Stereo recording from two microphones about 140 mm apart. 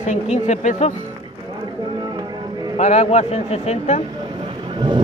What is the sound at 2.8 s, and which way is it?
A man's voice, 50° left (ahead or behind).